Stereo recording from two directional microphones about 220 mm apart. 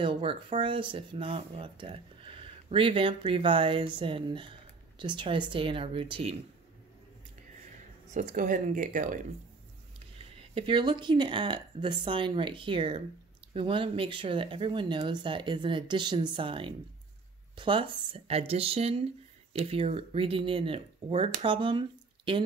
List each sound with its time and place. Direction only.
0.0 s speech: 25° right (ahead or behind)
8.1 s speech: 35° right (ahead or behind)
10.5 s speech: 20° right (ahead or behind)